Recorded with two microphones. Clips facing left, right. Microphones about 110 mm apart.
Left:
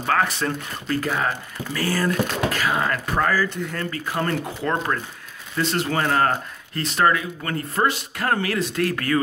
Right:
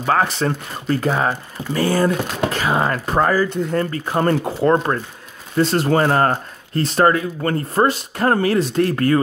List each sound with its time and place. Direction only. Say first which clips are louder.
0.0 s speech: right 4 dB; 25° right (ahead or behind)